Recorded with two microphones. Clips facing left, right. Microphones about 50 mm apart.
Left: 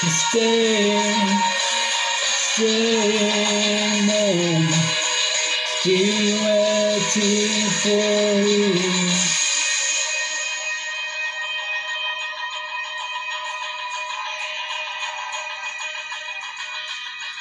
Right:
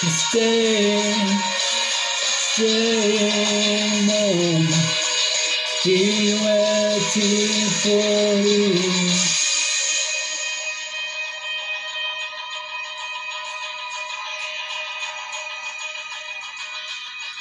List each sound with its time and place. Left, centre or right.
0.3 s music: centre
5.7 s music: centre
5.9 s music: centre